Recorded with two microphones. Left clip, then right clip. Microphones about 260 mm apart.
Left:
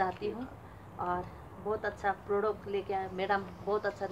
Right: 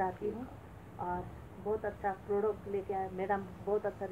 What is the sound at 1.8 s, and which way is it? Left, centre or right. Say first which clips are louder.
A woman's voice: left 3 dB; left.